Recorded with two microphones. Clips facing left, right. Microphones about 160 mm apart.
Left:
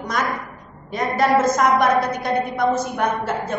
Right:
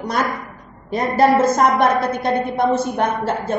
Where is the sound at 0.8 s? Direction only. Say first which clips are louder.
Right 4 dB; 30° right (ahead or behind).